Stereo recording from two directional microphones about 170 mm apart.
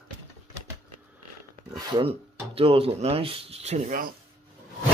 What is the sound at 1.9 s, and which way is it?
Speech, 30° right (ahead or behind).